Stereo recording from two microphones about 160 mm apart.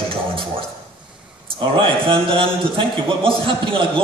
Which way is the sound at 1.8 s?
35° right (ahead or behind).